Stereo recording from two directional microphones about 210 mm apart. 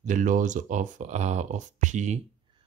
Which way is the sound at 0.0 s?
40° right (ahead or behind).